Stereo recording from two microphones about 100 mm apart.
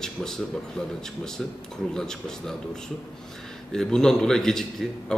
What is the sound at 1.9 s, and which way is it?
A man's voice, 5° left (ahead or behind).